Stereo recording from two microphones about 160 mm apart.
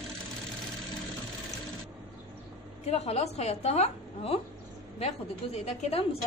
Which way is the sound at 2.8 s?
40° left (ahead or behind).